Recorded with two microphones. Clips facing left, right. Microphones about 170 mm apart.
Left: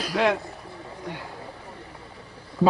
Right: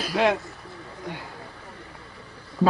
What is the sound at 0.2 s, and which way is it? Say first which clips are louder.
Speech: right 1 dB; 20° right (ahead or behind).